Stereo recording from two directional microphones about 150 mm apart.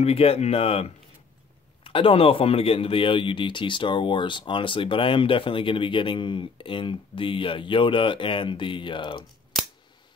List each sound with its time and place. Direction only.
0.0 s speech: 40° left (ahead or behind)